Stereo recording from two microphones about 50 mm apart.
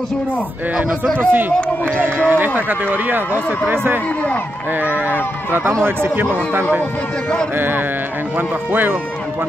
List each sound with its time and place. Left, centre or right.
1.1 s a man's voice: right
4.7 s speech: right
5.5 s a man's voice: right
7.5 s a man's voice: right